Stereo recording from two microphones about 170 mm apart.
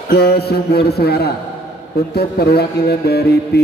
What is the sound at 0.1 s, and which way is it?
Speech, 70° left (ahead or behind).